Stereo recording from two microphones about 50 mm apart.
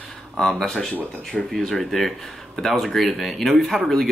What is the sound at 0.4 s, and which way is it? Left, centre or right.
Speech, centre.